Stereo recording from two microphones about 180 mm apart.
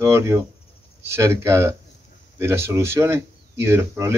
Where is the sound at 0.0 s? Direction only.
15° right (ahead or behind).